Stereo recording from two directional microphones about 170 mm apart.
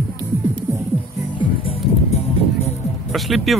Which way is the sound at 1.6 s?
35° left (ahead or behind).